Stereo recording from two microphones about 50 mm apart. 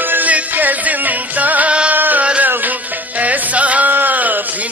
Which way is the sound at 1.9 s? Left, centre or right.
Right.